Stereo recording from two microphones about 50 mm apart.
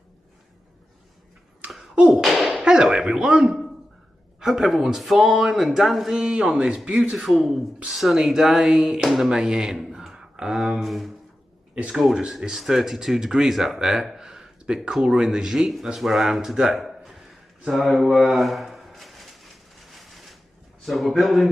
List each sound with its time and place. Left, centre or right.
2.0 s a sound: centre
2.6 s speech: centre
6.1 s speech: centre
7.3 s speech: centre
9.8 s a sound: centre
10.8 s speech: centre
12.2 s speech: centre
18.0 s a sound: centre
20.8 s speech: centre